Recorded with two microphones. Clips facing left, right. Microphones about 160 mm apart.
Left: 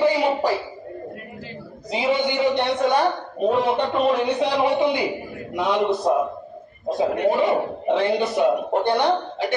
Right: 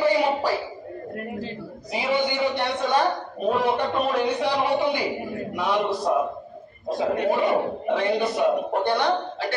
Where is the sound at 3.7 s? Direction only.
20° left (ahead or behind).